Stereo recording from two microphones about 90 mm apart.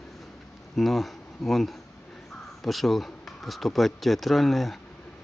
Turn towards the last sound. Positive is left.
turn(degrees=0)  # may be behind; listen again after turning